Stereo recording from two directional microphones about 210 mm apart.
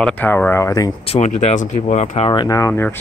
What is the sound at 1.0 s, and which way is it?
Speech, 30° left (ahead or behind).